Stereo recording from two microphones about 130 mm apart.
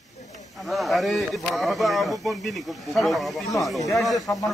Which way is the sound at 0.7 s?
Centre (ahead or behind).